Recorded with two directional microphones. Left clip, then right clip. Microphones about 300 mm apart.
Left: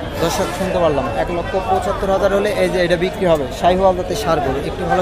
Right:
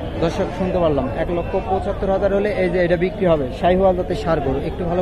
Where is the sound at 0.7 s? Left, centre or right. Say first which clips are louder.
Left 3 dB; centre.